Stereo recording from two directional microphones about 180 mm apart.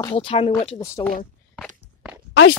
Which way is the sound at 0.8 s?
15° left (ahead or behind).